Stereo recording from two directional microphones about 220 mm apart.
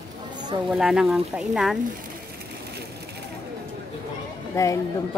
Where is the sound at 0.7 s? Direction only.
Centre (ahead or behind).